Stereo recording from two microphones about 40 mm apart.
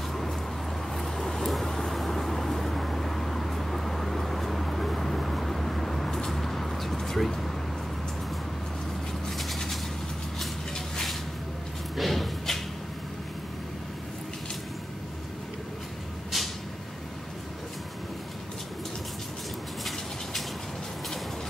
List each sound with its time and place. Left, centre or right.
0.9 s vehicle: centre
9.4 s bird: centre
12.0 s a sound: centre
16.3 s vehicle: centre